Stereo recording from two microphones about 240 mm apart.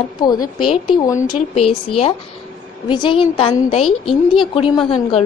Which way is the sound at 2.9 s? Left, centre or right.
Centre.